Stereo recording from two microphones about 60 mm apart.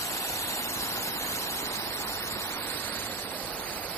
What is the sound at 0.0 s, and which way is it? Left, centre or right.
Waterfall, left.